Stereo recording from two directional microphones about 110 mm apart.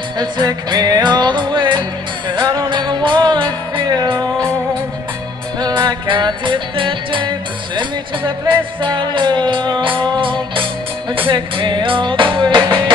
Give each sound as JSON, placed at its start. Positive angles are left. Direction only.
{"t": 0.2, "sound": "music", "side_deg": -40}
{"t": 5.6, "sound": "music", "side_deg": -40}